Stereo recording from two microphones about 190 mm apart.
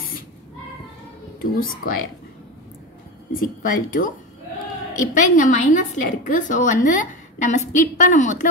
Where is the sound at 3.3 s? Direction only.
50° left (ahead or behind).